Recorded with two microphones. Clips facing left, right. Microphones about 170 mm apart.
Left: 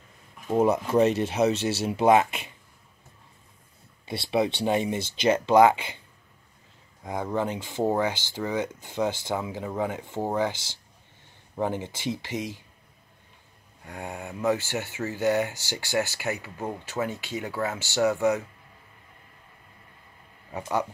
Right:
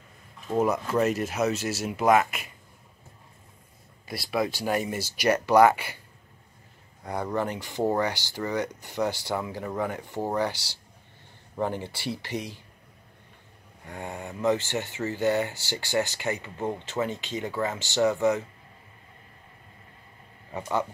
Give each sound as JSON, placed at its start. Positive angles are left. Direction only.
{"t": 0.5, "sound": "speech", "side_deg": 25}
{"t": 4.1, "sound": "speech", "side_deg": 25}
{"t": 7.3, "sound": "speech", "side_deg": 15}
{"t": 13.8, "sound": "speech", "side_deg": 10}
{"t": 20.5, "sound": "speech", "side_deg": 5}